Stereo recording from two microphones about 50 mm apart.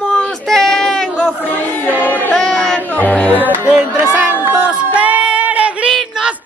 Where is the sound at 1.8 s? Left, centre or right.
Left.